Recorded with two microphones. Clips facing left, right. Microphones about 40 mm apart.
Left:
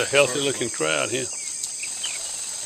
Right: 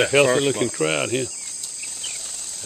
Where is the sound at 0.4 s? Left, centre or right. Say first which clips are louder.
Right 4 dB; centre.